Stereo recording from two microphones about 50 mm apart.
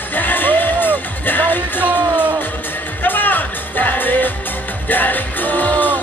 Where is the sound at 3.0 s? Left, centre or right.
Left.